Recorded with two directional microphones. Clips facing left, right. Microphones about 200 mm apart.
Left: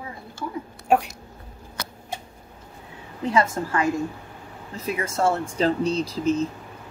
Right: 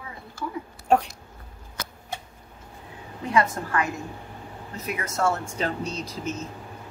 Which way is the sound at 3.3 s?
25° left (ahead or behind).